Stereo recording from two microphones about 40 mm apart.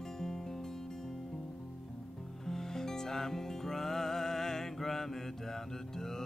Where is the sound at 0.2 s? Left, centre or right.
Centre.